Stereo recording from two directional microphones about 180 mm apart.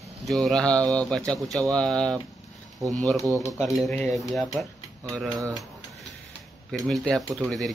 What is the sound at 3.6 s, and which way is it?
Speech, centre (ahead or behind).